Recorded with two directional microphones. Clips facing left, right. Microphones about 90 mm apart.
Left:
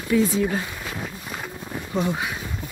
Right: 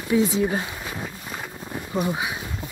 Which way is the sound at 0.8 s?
5° right (ahead or behind).